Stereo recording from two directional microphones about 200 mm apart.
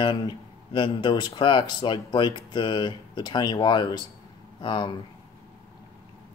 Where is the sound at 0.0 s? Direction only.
25° left (ahead or behind).